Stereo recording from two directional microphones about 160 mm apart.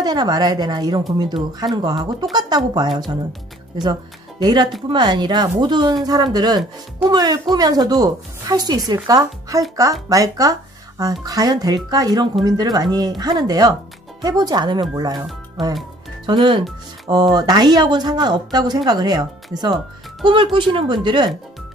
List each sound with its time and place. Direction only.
0.0 s a woman's voice: 25° right (ahead or behind)
4.4 s a woman's voice: 25° right (ahead or behind)
16.3 s a woman's voice: 30° right (ahead or behind)